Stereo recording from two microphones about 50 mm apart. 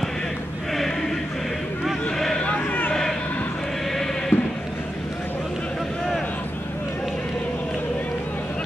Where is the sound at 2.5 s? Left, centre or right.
Left.